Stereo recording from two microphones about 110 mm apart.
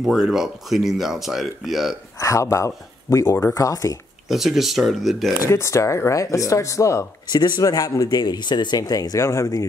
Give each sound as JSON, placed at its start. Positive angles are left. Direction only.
{"t": 0.0, "sound": "speech", "side_deg": -5}
{"t": 2.1, "sound": "speech", "side_deg": 30}
{"t": 4.3, "sound": "speech", "side_deg": 0}
{"t": 5.5, "sound": "speech", "side_deg": 25}